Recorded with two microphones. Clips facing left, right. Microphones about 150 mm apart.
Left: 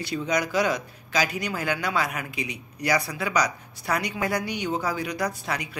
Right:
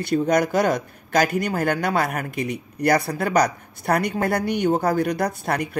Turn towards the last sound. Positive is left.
turn(degrees=-55)  # may be behind; listen again after turning